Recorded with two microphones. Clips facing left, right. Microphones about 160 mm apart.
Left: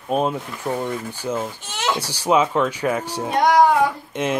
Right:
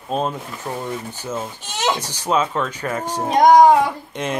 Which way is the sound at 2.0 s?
10° left (ahead or behind).